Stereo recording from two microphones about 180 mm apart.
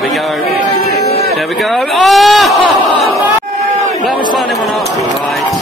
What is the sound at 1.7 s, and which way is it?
Speech, centre (ahead or behind).